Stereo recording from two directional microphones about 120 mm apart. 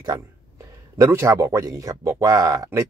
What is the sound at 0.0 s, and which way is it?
Speech, 30° right (ahead or behind).